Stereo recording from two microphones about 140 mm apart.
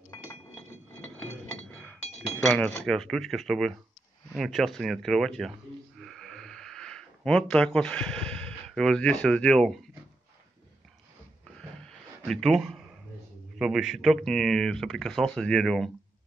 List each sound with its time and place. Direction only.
1.7 s chink: 15° left (ahead or behind)
2.0 s chink: 50° left (ahead or behind)
2.4 s cutlery: 5° left (ahead or behind)
2.8 s speech: 5° left (ahead or behind)
5.9 s a sound: 5° left (ahead or behind)
12.3 s speech: centre (ahead or behind)